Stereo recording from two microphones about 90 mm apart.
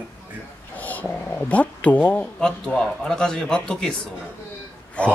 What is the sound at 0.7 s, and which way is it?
Speech, 15° left (ahead or behind).